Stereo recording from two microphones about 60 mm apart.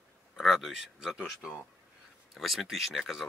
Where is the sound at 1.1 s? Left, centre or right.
Centre.